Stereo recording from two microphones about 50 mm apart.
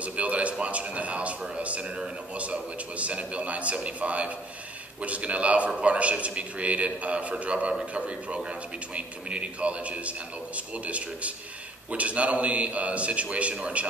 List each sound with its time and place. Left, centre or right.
0.0 s a man's voice: right